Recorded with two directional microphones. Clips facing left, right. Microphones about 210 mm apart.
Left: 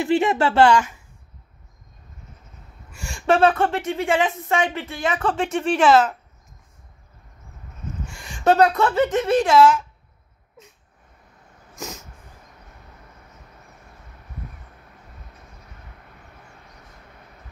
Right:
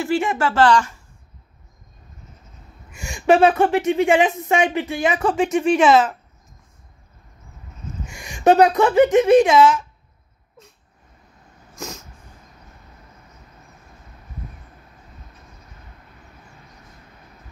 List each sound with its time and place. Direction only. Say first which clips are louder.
0.0 s speech: left 2 dB; 20° left (ahead or behind)
3.3 s speech: right 2 dB; 15° right (ahead or behind)
8.2 s speech: right 3 dB; 15° right (ahead or behind)
11.7 s cat: right 1 dB; centre (ahead or behind)